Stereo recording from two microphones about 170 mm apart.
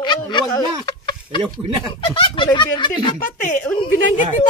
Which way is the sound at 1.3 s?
30° left (ahead or behind).